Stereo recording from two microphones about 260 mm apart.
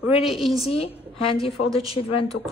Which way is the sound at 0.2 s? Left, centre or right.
Centre.